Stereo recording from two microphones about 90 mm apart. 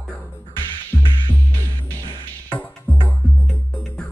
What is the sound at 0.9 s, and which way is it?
Music, 15° left (ahead or behind).